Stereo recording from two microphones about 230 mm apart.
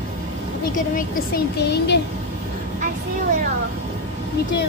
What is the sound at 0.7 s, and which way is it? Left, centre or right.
Speech, left.